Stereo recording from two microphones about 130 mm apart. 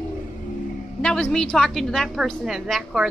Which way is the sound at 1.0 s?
5° left (ahead or behind).